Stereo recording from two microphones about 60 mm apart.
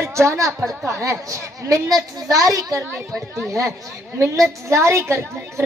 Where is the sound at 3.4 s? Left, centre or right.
Right.